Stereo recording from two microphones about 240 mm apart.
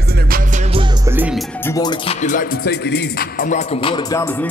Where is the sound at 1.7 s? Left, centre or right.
Centre.